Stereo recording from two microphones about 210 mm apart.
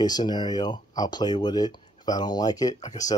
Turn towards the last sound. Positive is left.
turn(degrees=15)  # may be behind; listen again after turning